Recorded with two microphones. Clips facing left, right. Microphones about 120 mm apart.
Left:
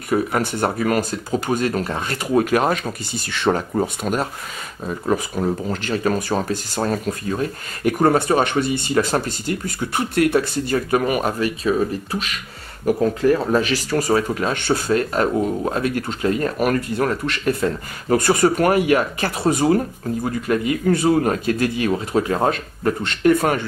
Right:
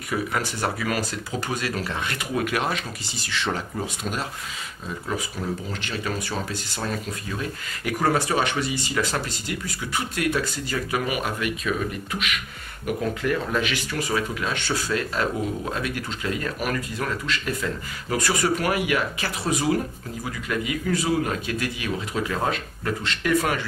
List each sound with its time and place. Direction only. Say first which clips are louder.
0.4 s speech: left 7 dB; 55° left (ahead or behind)
0.8 s speech: left 7 dB; 45° left (ahead or behind)
8.9 s speech: left 8 dB; 40° left (ahead or behind); by 10.8 s 55° left (ahead or behind)
10.9 s speech: left 5 dB; 45° left (ahead or behind)
17.0 s speech: left 7 dB; 55° left (ahead or behind)
18.1 s speech: left 7 dB; 45° left (ahead or behind)